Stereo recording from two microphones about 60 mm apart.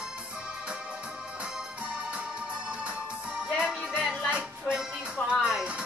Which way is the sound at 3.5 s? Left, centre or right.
Centre.